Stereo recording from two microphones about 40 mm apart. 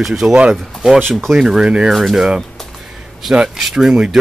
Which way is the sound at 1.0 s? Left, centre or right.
Centre.